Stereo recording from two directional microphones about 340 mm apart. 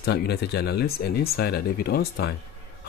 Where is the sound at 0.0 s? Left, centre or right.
Left.